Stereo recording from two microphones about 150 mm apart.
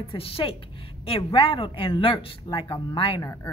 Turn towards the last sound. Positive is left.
turn(degrees=20)  # may be behind; listen again after turning